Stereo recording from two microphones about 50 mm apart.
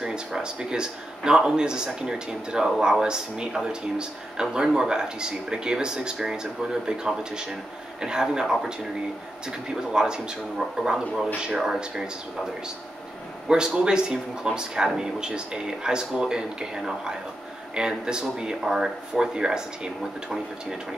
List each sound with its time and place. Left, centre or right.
0.0 s speech: centre
13.5 s speech: centre